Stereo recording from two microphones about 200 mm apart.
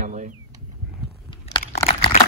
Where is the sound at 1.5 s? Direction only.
25° left (ahead or behind).